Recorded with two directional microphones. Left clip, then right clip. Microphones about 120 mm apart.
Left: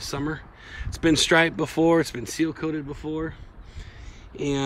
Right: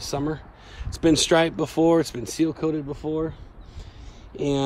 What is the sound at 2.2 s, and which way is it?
Speech, 45° right (ahead or behind).